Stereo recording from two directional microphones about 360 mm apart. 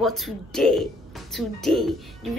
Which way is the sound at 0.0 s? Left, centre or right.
Centre.